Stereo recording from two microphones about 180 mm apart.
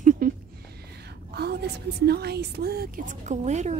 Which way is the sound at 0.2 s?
50° right (ahead or behind).